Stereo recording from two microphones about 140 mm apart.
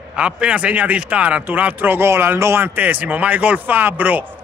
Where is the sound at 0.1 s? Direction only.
5° right (ahead or behind).